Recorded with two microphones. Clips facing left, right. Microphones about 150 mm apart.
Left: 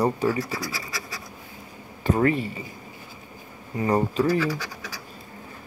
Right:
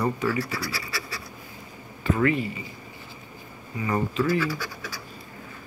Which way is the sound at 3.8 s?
40° left (ahead or behind).